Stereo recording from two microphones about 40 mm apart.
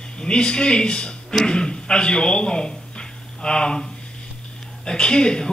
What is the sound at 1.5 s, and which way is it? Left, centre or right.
A man's voice, left.